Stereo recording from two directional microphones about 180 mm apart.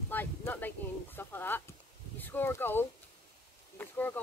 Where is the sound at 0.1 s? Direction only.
10° left (ahead or behind).